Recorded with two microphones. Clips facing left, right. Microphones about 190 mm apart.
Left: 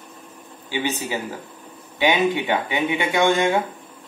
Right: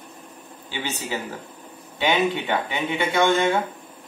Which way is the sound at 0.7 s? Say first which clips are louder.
Left 4 dB; 15° left (ahead or behind).